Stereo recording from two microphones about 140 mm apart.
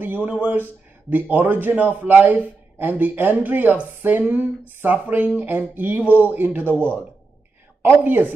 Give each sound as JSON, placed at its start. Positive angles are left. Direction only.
{"t": 0.0, "sound": "a man's voice", "side_deg": -15}